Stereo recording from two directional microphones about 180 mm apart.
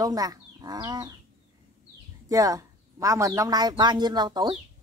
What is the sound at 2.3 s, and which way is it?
Speech, 20° right (ahead or behind).